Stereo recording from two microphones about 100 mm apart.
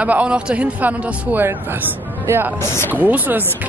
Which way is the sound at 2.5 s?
25° left (ahead or behind).